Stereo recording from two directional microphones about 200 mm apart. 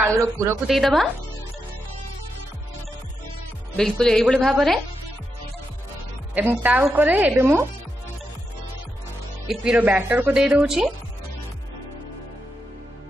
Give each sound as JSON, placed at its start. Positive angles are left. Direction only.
{"t": 0.0, "sound": "a woman's voice", "side_deg": -15}
{"t": 0.7, "sound": "speech", "side_deg": 0}
{"t": 3.7, "sound": "speech", "side_deg": 5}
{"t": 6.3, "sound": "a woman's voice", "side_deg": -10}
{"t": 9.5, "sound": "speech", "side_deg": -5}